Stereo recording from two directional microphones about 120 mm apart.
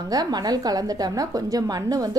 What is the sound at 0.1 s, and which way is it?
A woman's voice, 35° right (ahead or behind).